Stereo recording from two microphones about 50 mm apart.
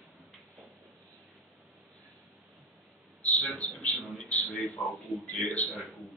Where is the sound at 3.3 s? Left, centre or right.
Left.